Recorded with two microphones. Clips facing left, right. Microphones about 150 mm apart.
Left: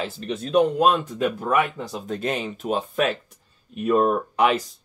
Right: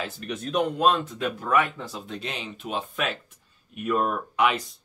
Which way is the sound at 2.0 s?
45° left (ahead or behind).